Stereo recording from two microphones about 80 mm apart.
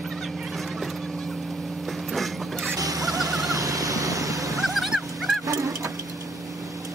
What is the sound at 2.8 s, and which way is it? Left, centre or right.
Music, right.